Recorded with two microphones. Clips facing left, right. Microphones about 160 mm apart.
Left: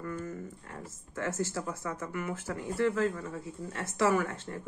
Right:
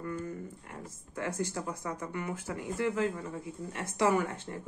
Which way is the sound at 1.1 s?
15° right (ahead or behind).